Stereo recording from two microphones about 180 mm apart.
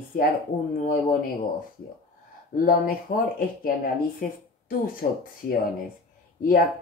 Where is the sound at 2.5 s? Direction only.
50° left (ahead or behind).